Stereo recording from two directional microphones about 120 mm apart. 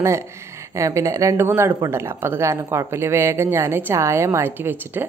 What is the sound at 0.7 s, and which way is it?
A woman's voice, 25° right (ahead or behind).